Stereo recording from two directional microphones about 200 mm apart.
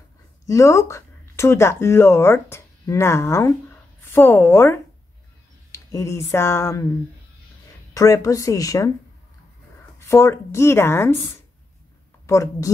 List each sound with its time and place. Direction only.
0.5 s speech: 15° left (ahead or behind)
7.9 s speech: 15° left (ahead or behind)
9.9 s speech: 15° left (ahead or behind)
12.3 s speech: 15° left (ahead or behind)